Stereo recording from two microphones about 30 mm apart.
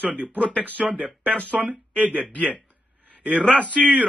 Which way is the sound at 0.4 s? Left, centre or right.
Left.